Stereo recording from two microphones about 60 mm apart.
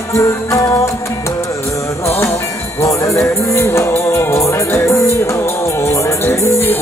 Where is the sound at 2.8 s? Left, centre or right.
Left.